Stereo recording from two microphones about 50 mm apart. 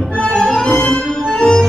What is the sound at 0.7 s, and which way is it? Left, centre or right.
Music, left.